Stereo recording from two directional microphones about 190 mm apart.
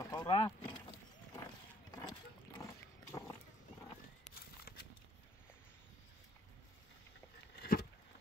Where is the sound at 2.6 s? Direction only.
15° left (ahead or behind).